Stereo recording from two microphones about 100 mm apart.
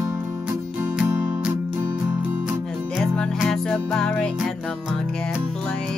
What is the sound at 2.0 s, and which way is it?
Music, 15° right (ahead or behind).